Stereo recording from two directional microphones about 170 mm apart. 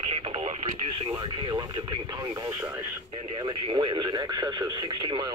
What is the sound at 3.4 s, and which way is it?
Speech, 25° right (ahead or behind).